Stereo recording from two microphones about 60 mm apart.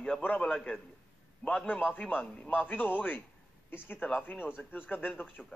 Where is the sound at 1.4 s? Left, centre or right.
Left.